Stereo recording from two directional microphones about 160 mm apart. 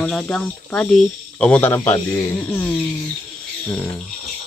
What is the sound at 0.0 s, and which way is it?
Speech, 5° left (ahead or behind).